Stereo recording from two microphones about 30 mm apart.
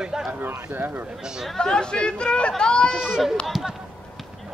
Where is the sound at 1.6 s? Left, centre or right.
Left.